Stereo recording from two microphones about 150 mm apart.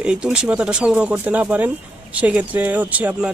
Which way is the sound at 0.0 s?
5° right (ahead or behind).